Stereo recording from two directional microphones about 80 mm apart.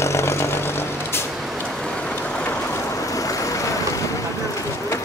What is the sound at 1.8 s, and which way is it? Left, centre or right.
Vehicle, centre.